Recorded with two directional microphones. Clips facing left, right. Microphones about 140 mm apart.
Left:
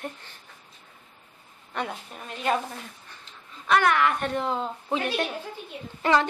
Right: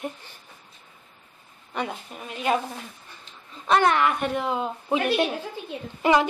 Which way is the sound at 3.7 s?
25° right (ahead or behind).